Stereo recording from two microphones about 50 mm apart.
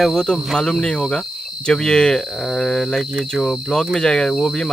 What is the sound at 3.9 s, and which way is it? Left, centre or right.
Speech, centre.